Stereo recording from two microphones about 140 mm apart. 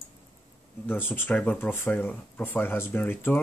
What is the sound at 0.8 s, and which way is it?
Speech, 15° left (ahead or behind).